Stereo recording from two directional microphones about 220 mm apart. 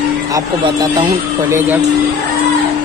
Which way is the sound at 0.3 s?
15° right (ahead or behind).